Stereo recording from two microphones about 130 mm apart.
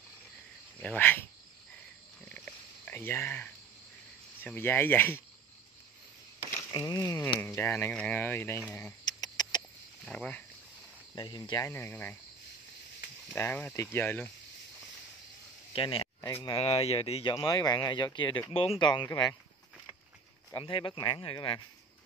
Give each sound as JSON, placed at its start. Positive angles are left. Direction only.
{"t": 0.7, "sound": "speech", "side_deg": 10}
{"t": 2.3, "sound": "a sound", "side_deg": 10}
{"t": 4.4, "sound": "speech", "side_deg": 15}
{"t": 6.7, "sound": "speech", "side_deg": 30}
{"t": 9.0, "sound": "a sound", "side_deg": 30}
{"t": 10.0, "sound": "speech", "side_deg": 10}
{"t": 11.1, "sound": "speech", "side_deg": 35}
{"t": 11.7, "sound": "speech", "side_deg": 15}
{"t": 13.3, "sound": "speech", "side_deg": 15}
{"t": 15.7, "sound": "speech", "side_deg": 45}
{"t": 17.3, "sound": "speech", "side_deg": 30}
{"t": 20.5, "sound": "speech", "side_deg": 40}